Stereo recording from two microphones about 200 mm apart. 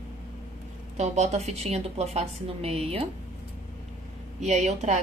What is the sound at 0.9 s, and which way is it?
A woman's voice, 35° right (ahead or behind).